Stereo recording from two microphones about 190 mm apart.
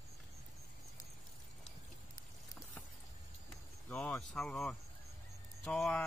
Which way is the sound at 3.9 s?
5° left (ahead or behind).